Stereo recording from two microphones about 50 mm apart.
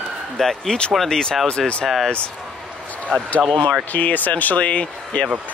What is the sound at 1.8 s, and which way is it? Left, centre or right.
Speech, centre.